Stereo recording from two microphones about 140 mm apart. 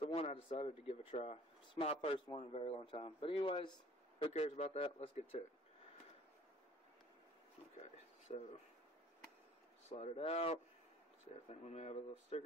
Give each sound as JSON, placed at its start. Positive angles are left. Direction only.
{"t": 0.0, "sound": "speech", "side_deg": 40}
{"t": 4.3, "sound": "speech", "side_deg": 50}
{"t": 7.8, "sound": "a sound", "side_deg": 45}
{"t": 9.8, "sound": "speech", "side_deg": 50}